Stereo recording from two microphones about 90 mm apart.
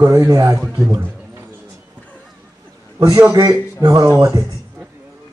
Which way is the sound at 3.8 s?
45° right (ahead or behind).